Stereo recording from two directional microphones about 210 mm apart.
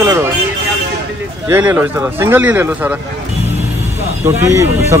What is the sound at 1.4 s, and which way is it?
Speech, 10° right (ahead or behind).